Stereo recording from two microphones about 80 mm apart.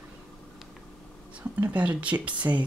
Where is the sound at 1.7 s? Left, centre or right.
Centre.